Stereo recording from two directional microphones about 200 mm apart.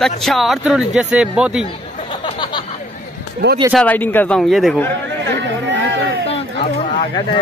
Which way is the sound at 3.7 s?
10° left (ahead or behind).